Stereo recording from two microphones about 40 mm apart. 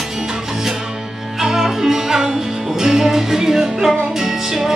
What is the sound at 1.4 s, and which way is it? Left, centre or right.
Music, centre.